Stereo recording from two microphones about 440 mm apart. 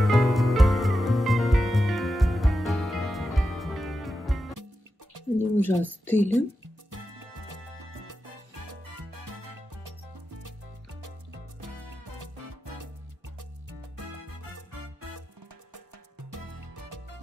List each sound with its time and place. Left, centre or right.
0.0 s music: centre
5.4 s speech: centre
8.8 s music: right
12.2 s music: right
16.3 s music: right